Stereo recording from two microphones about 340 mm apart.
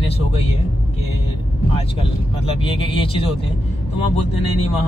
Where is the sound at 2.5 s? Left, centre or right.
Centre.